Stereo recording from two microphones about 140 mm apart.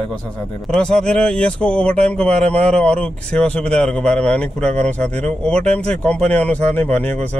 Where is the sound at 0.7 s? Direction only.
5° left (ahead or behind).